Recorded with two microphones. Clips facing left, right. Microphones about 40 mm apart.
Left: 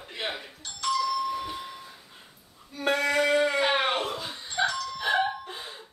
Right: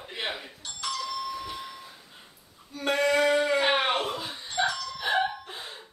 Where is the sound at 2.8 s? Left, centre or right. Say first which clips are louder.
Right 1 dB; centre.